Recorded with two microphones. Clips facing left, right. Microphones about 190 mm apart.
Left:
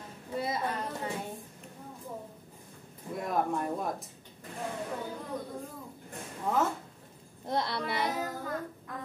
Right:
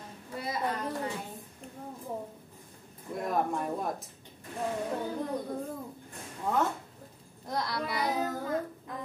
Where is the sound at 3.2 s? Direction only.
Centre (ahead or behind).